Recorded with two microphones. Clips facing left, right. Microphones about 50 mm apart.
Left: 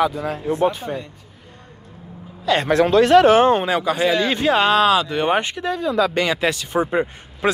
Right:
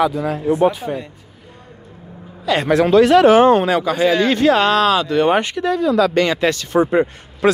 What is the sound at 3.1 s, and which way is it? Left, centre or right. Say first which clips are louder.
Speech: right 1 dB; right.